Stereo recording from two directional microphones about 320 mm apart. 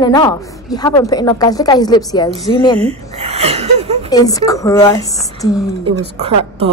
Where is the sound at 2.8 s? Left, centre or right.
Centre.